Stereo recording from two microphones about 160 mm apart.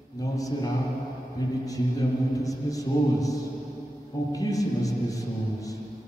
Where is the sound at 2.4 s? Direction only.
20° left (ahead or behind).